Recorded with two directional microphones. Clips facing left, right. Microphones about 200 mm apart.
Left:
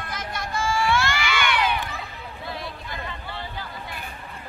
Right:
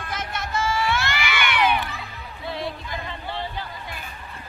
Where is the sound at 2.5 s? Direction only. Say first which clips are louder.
Right 5 dB; 25° right (ahead or behind).